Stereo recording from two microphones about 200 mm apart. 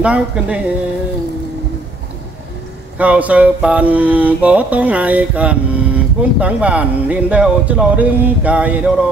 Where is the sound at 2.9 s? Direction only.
5° right (ahead or behind).